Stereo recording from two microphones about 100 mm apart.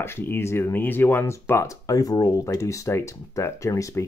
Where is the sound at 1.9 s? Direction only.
40° left (ahead or behind).